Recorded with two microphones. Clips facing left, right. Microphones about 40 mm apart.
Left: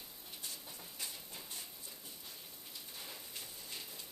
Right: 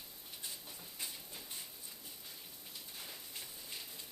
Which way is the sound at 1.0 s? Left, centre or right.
Centre.